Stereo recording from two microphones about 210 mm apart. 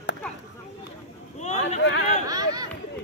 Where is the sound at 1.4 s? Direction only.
35° left (ahead or behind).